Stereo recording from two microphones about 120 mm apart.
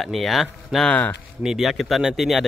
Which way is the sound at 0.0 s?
Centre (ahead or behind).